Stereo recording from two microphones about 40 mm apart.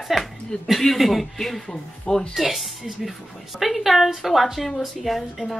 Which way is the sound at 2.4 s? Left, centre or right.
Centre.